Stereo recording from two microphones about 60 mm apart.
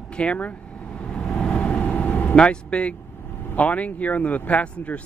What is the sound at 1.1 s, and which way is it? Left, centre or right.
Vehicle, centre.